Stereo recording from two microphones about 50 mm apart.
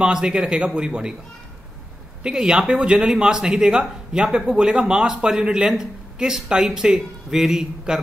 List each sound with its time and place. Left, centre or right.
0.0 s speech: centre
2.2 s speech: centre